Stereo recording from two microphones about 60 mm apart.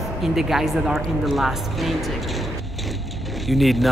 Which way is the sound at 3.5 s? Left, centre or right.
Centre.